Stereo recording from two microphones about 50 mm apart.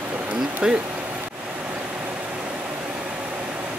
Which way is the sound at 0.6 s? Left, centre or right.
Centre.